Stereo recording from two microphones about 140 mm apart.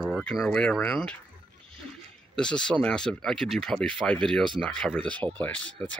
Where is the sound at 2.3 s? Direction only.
5° left (ahead or behind).